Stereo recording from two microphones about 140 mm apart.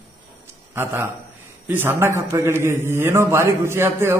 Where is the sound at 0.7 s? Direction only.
20° right (ahead or behind).